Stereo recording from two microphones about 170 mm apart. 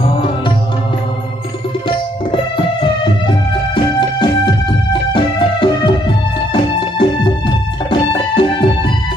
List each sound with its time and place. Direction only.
1.9 s music: 30° left (ahead or behind)